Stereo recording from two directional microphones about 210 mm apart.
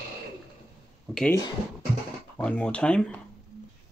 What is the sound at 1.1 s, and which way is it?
Speech, 5° left (ahead or behind).